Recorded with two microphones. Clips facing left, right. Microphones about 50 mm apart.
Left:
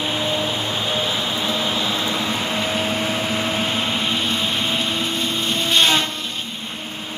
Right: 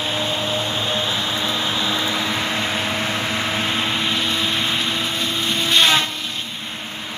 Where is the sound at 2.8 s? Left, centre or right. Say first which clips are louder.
Left 1 dB; right.